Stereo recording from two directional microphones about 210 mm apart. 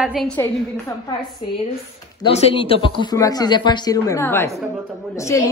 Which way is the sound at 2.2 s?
25° left (ahead or behind).